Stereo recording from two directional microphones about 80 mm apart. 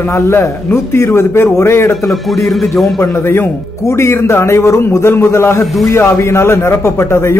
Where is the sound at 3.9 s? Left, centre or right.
Left.